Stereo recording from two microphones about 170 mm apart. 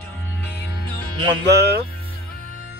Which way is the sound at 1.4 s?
75° right (ahead or behind).